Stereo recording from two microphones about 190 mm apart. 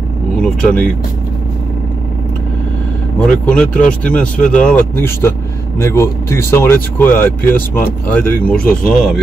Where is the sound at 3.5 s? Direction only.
5° left (ahead or behind).